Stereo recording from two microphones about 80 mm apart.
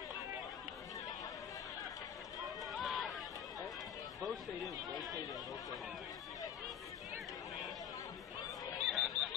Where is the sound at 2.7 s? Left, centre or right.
Centre.